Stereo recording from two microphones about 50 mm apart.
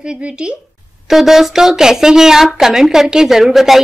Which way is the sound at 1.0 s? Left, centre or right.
Centre.